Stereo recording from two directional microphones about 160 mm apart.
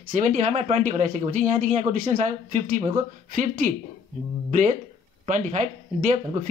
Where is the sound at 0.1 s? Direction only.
50° right (ahead or behind).